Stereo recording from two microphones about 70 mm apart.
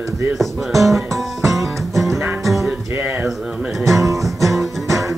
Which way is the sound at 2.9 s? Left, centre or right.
Right.